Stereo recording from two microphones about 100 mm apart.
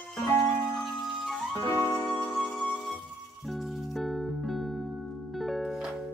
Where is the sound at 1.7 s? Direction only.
30° left (ahead or behind).